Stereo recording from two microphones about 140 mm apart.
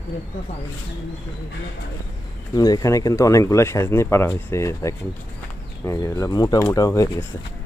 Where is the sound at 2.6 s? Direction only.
25° left (ahead or behind).